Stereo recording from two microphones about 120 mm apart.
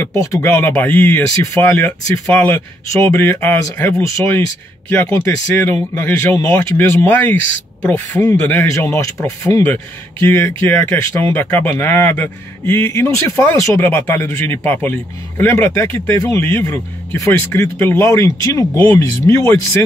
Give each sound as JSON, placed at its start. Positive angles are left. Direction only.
{"t": 0.0, "sound": "speech", "side_deg": 25}
{"t": 6.8, "sound": "speech", "side_deg": 15}